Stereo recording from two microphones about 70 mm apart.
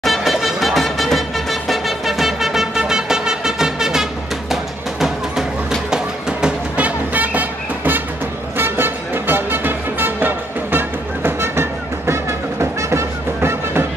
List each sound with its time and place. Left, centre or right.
0.0 s music: centre
5.9 s music: centre
6.8 s music: right